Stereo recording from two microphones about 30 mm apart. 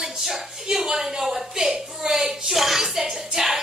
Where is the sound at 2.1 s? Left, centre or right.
Centre.